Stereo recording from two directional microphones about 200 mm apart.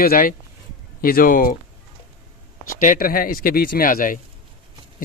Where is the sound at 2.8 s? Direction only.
40° left (ahead or behind).